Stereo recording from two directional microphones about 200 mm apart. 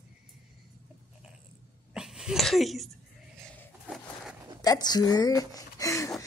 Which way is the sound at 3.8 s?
Centre (ahead or behind).